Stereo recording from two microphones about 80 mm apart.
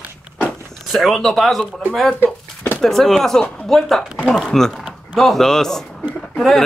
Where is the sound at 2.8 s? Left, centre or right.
Centre.